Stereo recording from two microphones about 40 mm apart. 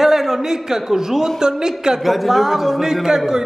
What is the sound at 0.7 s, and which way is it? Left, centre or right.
A man's voice, centre.